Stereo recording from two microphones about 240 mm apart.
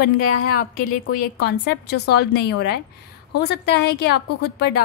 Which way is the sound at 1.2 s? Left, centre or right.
Left.